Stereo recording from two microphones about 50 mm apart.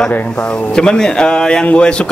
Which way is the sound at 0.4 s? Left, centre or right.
Centre.